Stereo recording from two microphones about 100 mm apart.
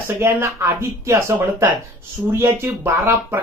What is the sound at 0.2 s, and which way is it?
Speech, 25° right (ahead or behind).